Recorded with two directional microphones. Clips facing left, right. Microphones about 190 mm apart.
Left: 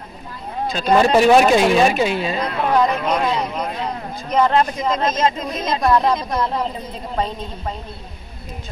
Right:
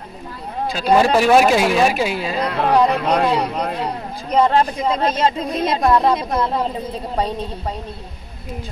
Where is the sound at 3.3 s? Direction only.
35° right (ahead or behind).